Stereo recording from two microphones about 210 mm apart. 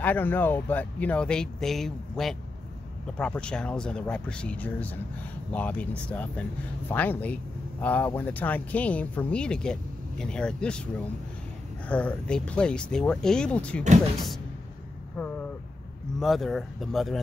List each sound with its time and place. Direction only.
0.0 s speech: 10° left (ahead or behind)
11.9 s speech: 5° left (ahead or behind)
15.1 s vehicle: 5° left (ahead or behind)
16.2 s speech: centre (ahead or behind)